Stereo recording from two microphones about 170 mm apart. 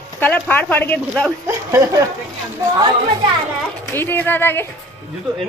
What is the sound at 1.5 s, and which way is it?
Speech, 20° right (ahead or behind).